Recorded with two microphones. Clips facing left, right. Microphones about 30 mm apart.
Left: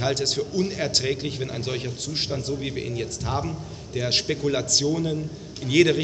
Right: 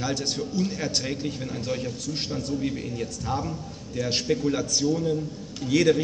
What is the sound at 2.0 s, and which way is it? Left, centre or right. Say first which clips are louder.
Speech: left 2 dB; left.